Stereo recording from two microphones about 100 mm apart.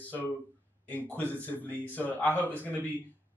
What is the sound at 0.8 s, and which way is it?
A man's voice, 15° left (ahead or behind).